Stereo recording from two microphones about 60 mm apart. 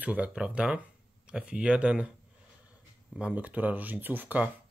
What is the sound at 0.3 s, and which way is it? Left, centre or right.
Speech, centre.